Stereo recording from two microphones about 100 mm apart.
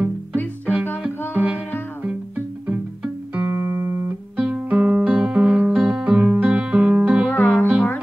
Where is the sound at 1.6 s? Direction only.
20° left (ahead or behind).